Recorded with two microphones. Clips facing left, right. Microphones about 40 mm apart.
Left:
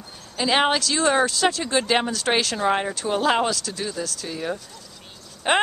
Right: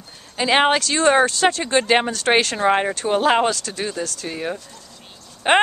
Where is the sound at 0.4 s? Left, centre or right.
Right.